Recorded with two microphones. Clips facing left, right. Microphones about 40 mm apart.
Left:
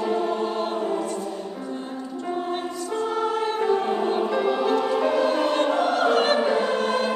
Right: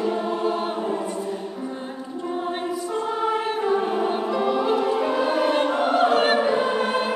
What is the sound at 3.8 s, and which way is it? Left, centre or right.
Music, centre.